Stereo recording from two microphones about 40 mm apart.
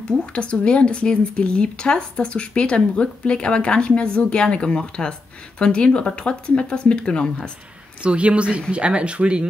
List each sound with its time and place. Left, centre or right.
0.1 s speech: left
8.0 s speech: right